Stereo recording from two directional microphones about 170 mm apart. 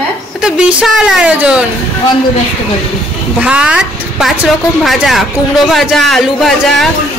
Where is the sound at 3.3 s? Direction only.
5° right (ahead or behind).